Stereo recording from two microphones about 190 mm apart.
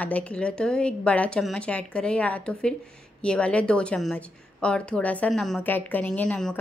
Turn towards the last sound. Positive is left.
turn(degrees=5)  # may be behind; listen again after turning